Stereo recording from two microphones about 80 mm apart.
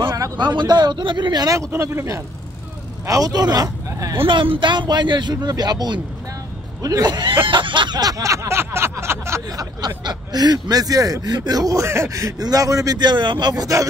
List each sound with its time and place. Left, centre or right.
0.6 s speech: right
1.7 s speech: right
3.1 s speech: right
4.1 s speech: right
7.4 s a sound: right
8.0 s a sound: right
9.5 s speech: right